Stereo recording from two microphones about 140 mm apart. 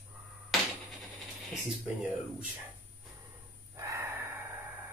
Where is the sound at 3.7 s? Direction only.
20° right (ahead or behind).